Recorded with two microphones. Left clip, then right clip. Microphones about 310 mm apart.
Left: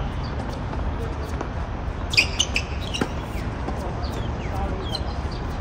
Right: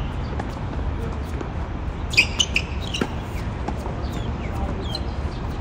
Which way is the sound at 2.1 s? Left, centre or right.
Centre.